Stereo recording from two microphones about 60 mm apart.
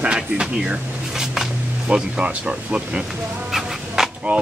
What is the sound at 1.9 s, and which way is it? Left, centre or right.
Speech, centre.